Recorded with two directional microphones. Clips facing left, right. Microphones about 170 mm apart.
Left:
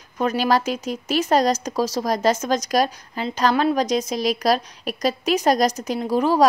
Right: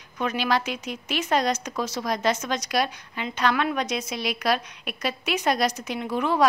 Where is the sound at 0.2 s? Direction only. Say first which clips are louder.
Left 5 dB; 40° left (ahead or behind).